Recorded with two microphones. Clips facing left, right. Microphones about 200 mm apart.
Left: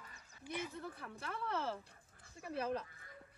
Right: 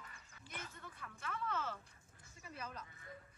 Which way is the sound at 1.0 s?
30° left (ahead or behind).